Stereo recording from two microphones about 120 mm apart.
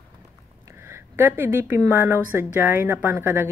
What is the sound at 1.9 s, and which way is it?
A woman's voice, 20° right (ahead or behind).